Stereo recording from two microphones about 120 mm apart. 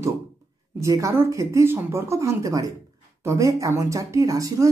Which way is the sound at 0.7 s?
25° right (ahead or behind).